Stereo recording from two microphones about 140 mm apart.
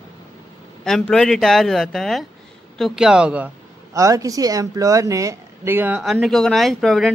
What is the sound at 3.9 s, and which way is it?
Speech, 25° right (ahead or behind).